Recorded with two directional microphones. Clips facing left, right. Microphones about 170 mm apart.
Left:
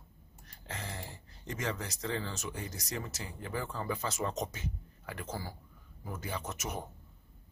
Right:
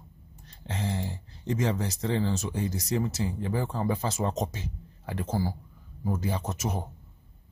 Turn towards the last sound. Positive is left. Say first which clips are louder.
# right 6 dB
turn(degrees=-30)  # may be behind; listen again after turning